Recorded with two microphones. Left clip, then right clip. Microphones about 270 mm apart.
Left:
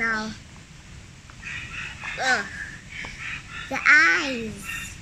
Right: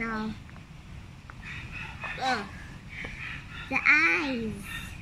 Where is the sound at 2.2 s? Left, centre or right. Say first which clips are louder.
Left 6 dB; centre.